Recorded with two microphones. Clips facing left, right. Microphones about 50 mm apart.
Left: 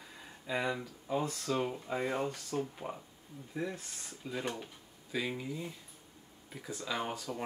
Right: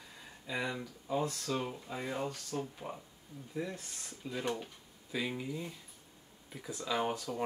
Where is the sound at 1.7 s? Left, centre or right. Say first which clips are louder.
Left 4 dB; left.